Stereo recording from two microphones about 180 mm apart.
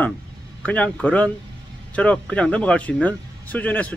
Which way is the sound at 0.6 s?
10° left (ahead or behind).